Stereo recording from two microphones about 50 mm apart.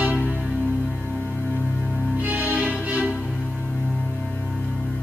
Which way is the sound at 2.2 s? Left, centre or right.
Right.